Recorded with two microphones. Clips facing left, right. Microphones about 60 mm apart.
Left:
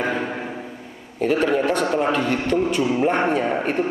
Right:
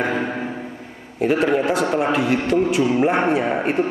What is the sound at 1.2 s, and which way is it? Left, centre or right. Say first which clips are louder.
A man's voice: right 1 dB; centre.